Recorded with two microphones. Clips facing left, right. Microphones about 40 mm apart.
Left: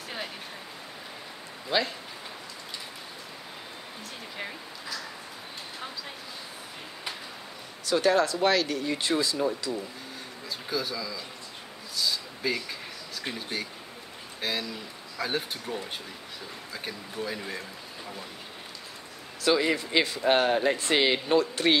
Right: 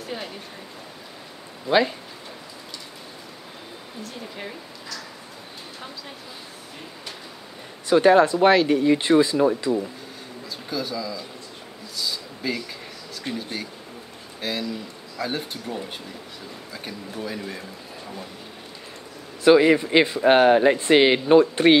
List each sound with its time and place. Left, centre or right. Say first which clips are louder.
4.0 s speech: right 3 dB; centre
7.8 s speech: right 8 dB; right
10.7 s speech: right 4 dB; centre
12.0 s a sound: even; centre
13.2 s speech: right 3 dB; centre
19.4 s speech: right 10 dB; right